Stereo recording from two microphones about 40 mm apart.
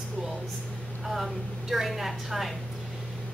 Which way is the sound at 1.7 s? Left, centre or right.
Centre.